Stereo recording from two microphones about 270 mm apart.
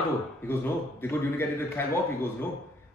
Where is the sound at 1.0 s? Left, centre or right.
Centre.